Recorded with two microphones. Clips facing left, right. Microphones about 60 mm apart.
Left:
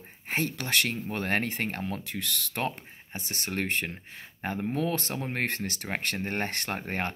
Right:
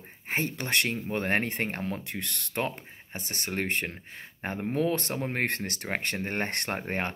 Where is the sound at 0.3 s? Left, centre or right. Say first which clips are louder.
Even; right.